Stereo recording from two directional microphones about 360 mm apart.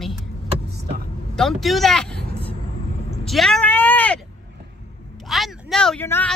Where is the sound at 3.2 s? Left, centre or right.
Centre.